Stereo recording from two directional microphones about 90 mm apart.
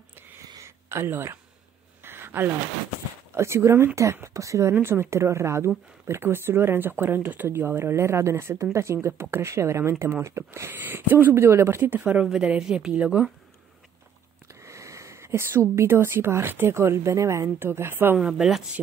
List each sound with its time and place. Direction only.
0.8 s speech: 25° right (ahead or behind)
2.0 s a sound: 25° right (ahead or behind)
3.3 s speech: 30° right (ahead or behind)
11.9 s a woman's voice: 15° right (ahead or behind)
14.6 s speech: 35° right (ahead or behind)
18.1 s a woman's voice: 10° right (ahead or behind)